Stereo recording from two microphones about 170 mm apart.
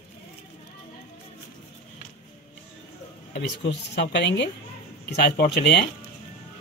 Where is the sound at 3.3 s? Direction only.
85° left.